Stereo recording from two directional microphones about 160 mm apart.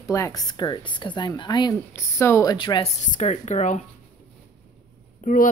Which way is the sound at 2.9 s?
50° left (ahead or behind).